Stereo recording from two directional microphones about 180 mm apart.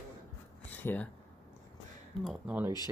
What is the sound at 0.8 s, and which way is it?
Speech, 10° left (ahead or behind).